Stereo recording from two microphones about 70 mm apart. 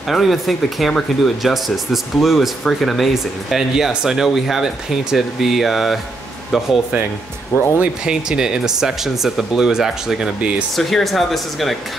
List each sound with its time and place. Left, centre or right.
0.1 s speech: centre
7.5 s speech: left
7.8 s speech: centre
10.8 s speech: centre